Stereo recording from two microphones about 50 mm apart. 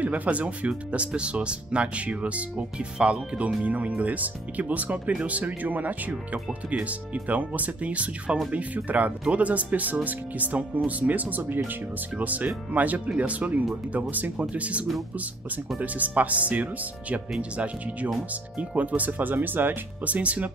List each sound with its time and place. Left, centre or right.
0.0 s speech: right
20.2 s speech: right